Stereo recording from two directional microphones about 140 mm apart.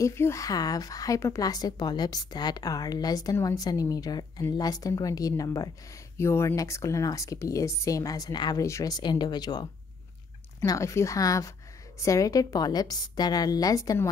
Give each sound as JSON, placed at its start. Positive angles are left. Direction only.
{"t": 0.0, "sound": "a woman's voice", "side_deg": 20}